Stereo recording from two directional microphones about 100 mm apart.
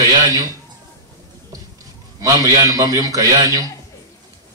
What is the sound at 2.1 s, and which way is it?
A man's voice, 35° right (ahead or behind).